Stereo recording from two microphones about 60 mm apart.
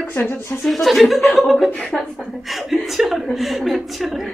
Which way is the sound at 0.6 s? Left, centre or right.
Centre.